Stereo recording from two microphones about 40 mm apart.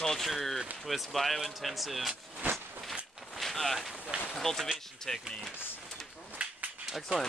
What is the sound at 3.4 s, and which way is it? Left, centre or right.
Boat, centre.